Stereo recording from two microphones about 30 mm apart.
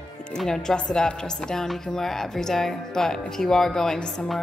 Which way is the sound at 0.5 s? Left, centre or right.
Centre.